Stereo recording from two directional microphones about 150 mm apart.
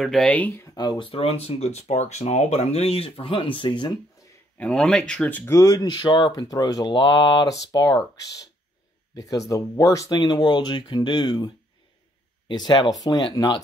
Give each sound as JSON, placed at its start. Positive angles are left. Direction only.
{"t": 0.0, "sound": "speech", "side_deg": 0}
{"t": 0.7, "sound": "speech", "side_deg": 30}
{"t": 4.6, "sound": "speech", "side_deg": 5}